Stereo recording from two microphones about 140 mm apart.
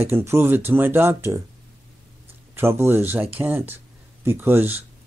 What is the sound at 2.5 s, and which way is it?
A man's voice, 15° right (ahead or behind).